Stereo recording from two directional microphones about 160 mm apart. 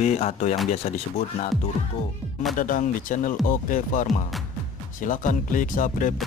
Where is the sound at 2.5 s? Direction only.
55° left (ahead or behind).